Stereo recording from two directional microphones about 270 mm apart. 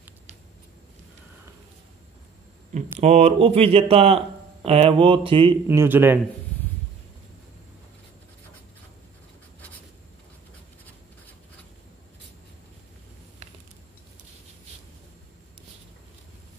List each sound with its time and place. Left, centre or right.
2.7 s speech: right
5.7 s a man's voice: centre